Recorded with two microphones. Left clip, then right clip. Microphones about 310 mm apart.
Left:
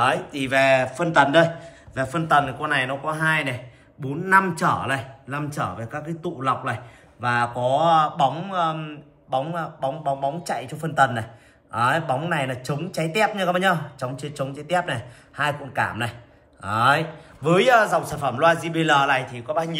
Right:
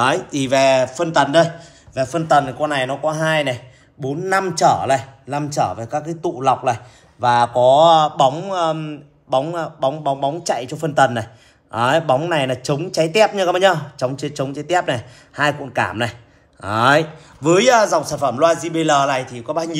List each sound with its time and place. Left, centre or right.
0.2 s a man's voice: centre